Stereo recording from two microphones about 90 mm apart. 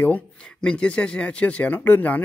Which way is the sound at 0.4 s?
10° left (ahead or behind).